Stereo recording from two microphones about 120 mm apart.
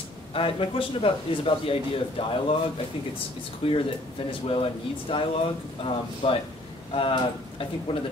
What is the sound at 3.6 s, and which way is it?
A man's voice, 50° left (ahead or behind).